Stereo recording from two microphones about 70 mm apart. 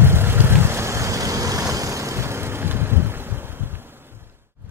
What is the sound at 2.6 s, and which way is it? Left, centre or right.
Boat, right.